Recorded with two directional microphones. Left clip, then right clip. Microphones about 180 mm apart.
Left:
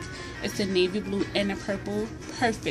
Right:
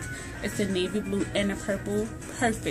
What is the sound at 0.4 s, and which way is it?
Speech, 10° right (ahead or behind).